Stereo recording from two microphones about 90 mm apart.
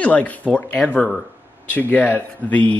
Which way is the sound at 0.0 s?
15° left (ahead or behind).